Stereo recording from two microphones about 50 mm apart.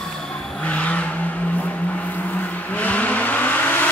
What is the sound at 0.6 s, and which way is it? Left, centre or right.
Vehicle, left.